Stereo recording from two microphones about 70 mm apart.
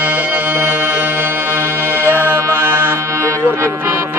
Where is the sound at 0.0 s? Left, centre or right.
Right.